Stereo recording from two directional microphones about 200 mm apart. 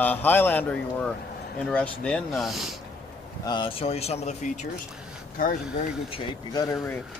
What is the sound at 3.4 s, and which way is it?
Speech, 25° left (ahead or behind).